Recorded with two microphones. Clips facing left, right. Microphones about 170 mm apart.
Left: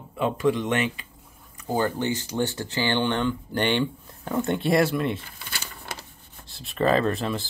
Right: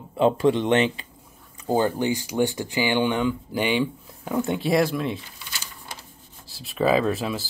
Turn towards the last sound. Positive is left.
turn(degrees=-5)  # may be behind; listen again after turning